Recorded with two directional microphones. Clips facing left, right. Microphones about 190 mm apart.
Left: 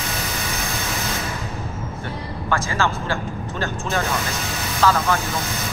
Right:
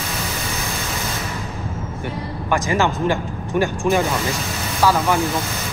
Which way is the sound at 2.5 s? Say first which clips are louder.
Right 4 dB; 15° right (ahead or behind).